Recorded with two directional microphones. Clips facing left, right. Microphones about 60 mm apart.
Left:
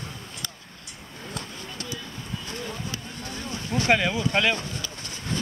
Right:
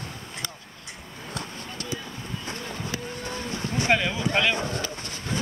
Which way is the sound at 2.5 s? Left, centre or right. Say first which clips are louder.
Right 1 dB; right.